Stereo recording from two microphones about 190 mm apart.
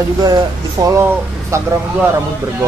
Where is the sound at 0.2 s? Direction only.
20° right (ahead or behind).